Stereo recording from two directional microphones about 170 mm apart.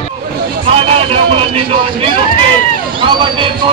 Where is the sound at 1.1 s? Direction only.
30° right (ahead or behind).